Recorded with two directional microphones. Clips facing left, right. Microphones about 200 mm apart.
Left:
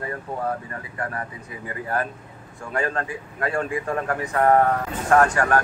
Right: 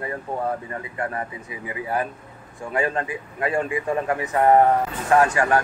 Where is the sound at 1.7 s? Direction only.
10° right (ahead or behind).